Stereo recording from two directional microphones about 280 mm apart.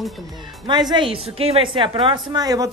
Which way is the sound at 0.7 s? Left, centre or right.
Centre.